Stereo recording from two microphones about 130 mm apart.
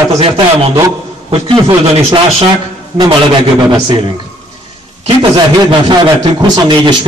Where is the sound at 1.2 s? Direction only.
45° right (ahead or behind).